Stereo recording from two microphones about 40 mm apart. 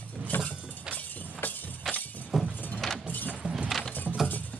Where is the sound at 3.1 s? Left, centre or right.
Left.